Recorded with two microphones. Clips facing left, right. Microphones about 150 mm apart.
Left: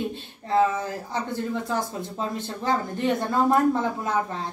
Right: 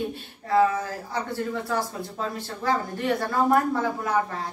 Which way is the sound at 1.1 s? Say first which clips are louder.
Even; 20° left (ahead or behind).